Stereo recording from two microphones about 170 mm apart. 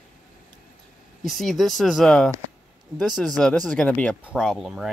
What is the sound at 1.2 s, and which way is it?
Speech, centre (ahead or behind).